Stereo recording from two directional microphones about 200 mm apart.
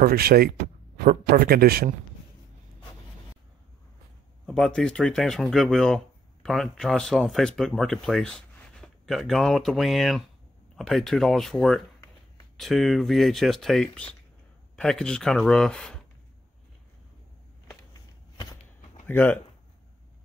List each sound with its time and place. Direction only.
0.0 s speech: 50° right (ahead or behind)
4.5 s speech: 5° left (ahead or behind)
19.0 s speech: 10° left (ahead or behind)